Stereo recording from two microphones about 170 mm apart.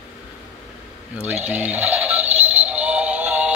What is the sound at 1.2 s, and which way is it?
Speech, 10° right (ahead or behind).